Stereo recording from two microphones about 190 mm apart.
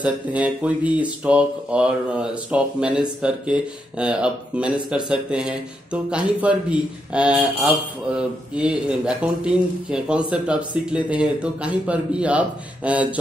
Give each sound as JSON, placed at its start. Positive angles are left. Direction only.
{"t": 0.0, "sound": "a man's voice", "side_deg": -5}